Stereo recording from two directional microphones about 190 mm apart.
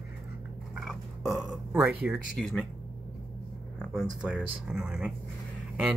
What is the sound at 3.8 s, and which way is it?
Speech, 5° right (ahead or behind).